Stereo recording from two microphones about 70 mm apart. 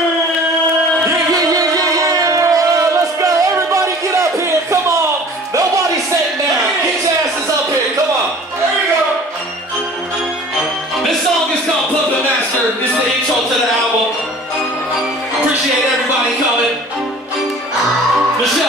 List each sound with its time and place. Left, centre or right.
1.5 s music: right